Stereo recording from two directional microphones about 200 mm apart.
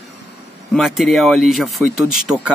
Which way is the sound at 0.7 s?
Centre (ahead or behind).